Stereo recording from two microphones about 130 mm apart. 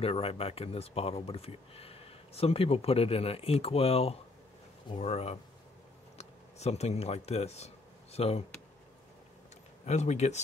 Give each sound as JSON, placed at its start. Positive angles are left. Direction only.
{"t": 0.0, "sound": "speech", "side_deg": 50}
{"t": 9.8, "sound": "speech", "side_deg": 60}